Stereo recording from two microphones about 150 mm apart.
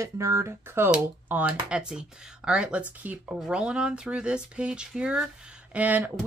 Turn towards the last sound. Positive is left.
turn(degrees=-10)  # may be behind; listen again after turning